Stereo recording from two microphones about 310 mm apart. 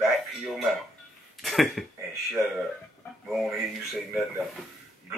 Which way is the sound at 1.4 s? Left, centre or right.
Centre.